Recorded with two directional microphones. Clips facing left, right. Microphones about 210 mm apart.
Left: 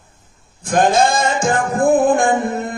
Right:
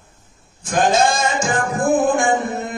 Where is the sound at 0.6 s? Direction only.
55° left (ahead or behind).